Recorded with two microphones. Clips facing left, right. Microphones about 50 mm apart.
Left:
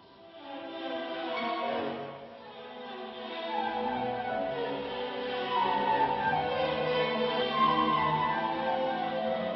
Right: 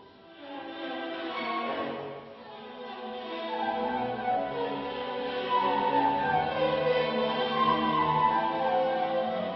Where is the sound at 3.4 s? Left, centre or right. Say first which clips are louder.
Right 1 dB; centre.